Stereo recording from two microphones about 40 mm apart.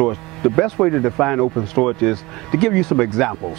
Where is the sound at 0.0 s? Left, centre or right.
Centre.